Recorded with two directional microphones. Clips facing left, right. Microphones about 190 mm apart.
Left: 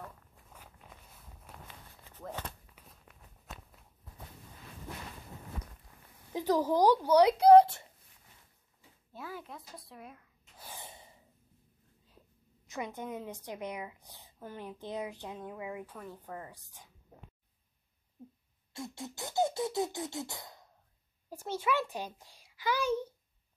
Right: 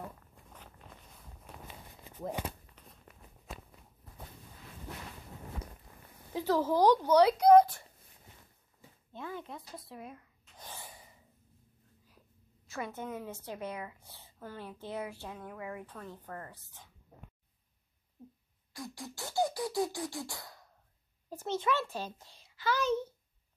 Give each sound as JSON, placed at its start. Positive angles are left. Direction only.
{"t": 1.5, "sound": "walk", "side_deg": 5}
{"t": 1.9, "sound": "a sound", "side_deg": -15}
{"t": 2.6, "sound": "walk", "side_deg": 0}
{"t": 6.3, "sound": "a woman's voice", "side_deg": 15}
{"t": 7.3, "sound": "a woman's voice", "side_deg": 30}
{"t": 9.1, "sound": "speech", "side_deg": 5}
{"t": 10.7, "sound": "a sound", "side_deg": 20}
{"t": 12.6, "sound": "a woman's voice", "side_deg": 15}
{"t": 18.7, "sound": "beatboxing", "side_deg": 25}
{"t": 21.3, "sound": "a woman's voice", "side_deg": 10}